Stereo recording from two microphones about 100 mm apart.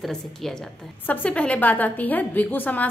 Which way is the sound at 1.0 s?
15° left (ahead or behind).